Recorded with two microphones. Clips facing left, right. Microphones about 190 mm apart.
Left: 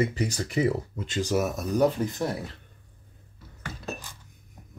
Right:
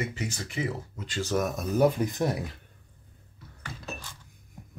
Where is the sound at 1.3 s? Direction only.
5° left (ahead or behind).